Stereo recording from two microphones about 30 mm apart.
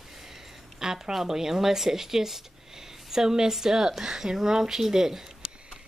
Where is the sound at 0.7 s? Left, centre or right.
Centre.